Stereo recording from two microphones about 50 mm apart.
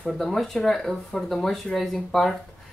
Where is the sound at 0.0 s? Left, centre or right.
Centre.